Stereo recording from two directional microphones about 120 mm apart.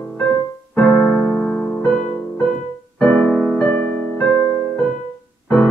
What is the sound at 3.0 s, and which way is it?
Music, 10° left (ahead or behind).